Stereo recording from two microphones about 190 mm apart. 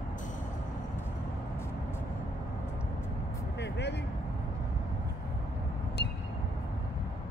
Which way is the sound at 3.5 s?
65° left (ahead or behind).